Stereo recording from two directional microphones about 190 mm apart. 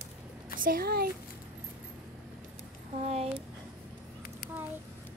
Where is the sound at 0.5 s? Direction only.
45° right (ahead or behind).